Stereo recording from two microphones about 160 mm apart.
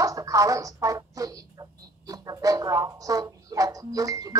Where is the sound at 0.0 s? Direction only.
20° right (ahead or behind).